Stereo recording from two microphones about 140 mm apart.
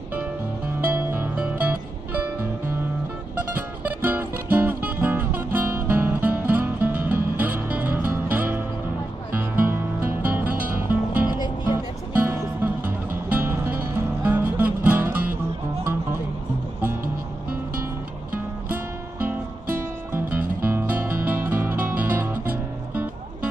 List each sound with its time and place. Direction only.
0.7 s music: 15° right (ahead or behind)
3.3 s music: 15° right (ahead or behind)
10.5 s music: 90° right
11.2 s music: 30° left (ahead or behind)
12.1 s music: 15° right (ahead or behind)
18.3 s music: 15° right (ahead or behind)